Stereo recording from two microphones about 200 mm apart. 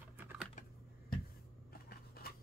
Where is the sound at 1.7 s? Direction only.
50° left (ahead or behind).